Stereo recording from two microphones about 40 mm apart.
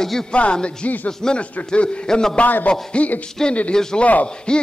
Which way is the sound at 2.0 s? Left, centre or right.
Centre.